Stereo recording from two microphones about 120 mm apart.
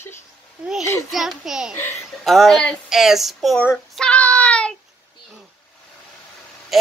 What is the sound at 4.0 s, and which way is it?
Child singing, 10° left (ahead or behind).